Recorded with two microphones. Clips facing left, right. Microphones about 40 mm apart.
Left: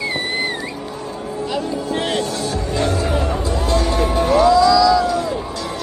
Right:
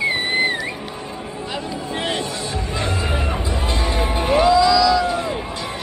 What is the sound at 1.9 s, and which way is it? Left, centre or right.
Music, right.